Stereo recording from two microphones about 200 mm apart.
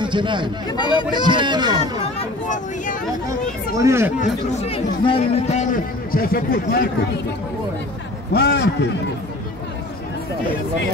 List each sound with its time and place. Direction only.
0.0 s speech: 25° right (ahead or behind)
0.7 s speech: 20° left (ahead or behind)
1.1 s speech: 25° right (ahead or behind)
2.1 s speech: 40° left (ahead or behind)
3.3 s speech: 15° right (ahead or behind)
4.2 s speech: 35° left (ahead or behind); by 6.9 s 50° left (ahead or behind)
8.3 s a man's voice: 55° left (ahead or behind)